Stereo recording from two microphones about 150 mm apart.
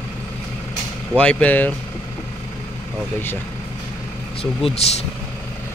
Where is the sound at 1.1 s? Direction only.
10° left (ahead or behind).